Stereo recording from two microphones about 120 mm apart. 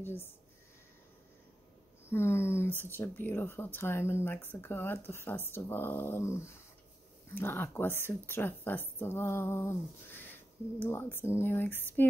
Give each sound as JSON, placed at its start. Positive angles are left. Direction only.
{"t": 0.0, "sound": "speech", "side_deg": 20}
{"t": 2.0, "sound": "speech", "side_deg": 20}